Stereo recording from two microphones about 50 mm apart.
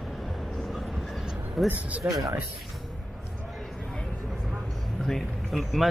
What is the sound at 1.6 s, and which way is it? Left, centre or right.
Speech, centre.